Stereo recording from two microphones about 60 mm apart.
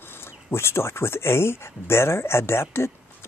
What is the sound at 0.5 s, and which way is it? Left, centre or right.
Speech, left.